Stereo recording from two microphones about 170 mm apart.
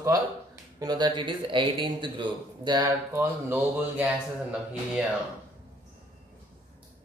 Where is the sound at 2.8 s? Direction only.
10° right (ahead or behind).